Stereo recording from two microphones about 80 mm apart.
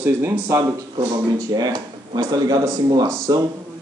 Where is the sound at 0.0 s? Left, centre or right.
Right.